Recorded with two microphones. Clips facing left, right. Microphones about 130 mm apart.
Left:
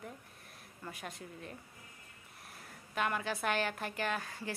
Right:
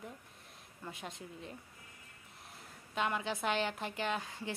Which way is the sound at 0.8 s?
20° right (ahead or behind).